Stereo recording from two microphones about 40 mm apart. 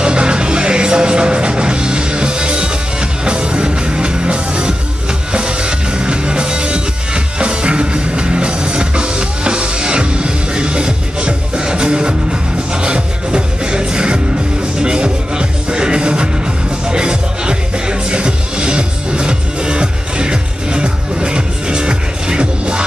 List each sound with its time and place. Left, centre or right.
0.0 s music: right